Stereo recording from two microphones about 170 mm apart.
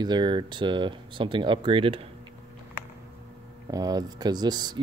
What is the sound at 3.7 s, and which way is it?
Speech, 20° right (ahead or behind).